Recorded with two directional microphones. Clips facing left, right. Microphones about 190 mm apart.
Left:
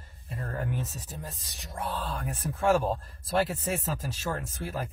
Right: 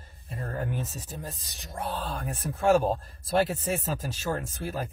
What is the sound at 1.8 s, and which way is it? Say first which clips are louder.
Speech: right 1 dB; 30° right (ahead or behind).